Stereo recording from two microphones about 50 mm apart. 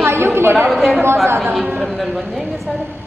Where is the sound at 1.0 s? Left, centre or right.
Right.